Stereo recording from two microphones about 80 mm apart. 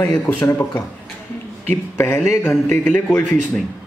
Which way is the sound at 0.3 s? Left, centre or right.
Left.